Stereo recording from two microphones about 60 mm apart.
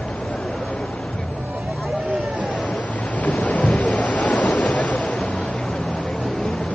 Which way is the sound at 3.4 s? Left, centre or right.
Left.